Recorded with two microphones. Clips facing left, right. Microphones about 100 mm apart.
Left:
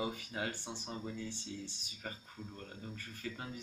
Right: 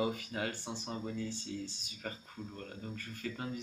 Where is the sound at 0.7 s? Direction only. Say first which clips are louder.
Right 3 dB; centre (ahead or behind).